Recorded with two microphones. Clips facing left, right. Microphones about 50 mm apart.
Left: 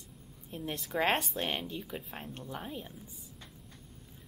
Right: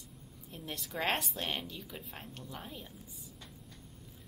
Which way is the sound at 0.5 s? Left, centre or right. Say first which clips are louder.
Left 6 dB; centre.